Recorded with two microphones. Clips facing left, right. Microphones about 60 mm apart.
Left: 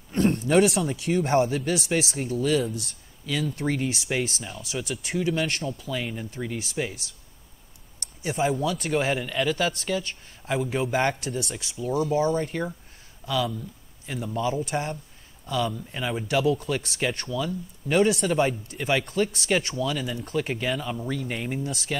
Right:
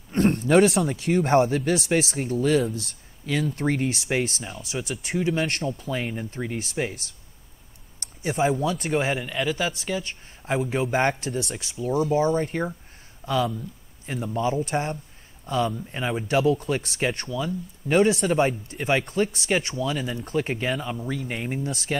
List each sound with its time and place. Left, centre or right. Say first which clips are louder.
0.3 s speech: right 3 dB; right
4.6 s speech: even; right
9.1 s speech: left 1 dB; centre
10.0 s a sound: right 1 dB; right
10.8 s speech: right 2 dB; right
21.1 s speech: even; centre
21.6 s speech: right 2 dB; right